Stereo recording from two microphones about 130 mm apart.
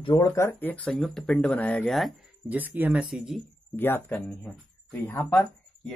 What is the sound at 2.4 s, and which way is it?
Speech, 15° right (ahead or behind).